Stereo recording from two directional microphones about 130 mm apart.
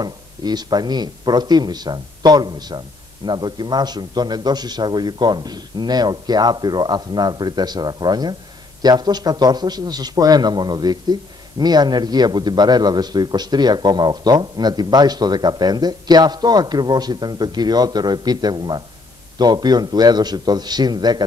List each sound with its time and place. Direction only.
0.0 s a man's voice: 30° right (ahead or behind)